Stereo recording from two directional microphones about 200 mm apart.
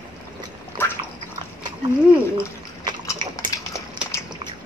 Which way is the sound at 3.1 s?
15° left (ahead or behind).